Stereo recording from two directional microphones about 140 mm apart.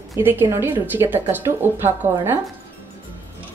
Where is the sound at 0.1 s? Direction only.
15° right (ahead or behind).